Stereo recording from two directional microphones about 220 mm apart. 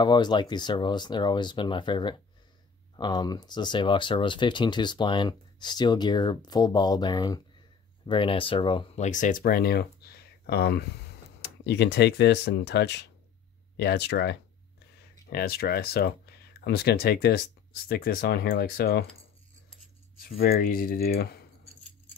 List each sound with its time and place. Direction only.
0.0 s speech: 20° left (ahead or behind); by 19.0 s 45° left (ahead or behind)
20.2 s speech: 40° left (ahead or behind)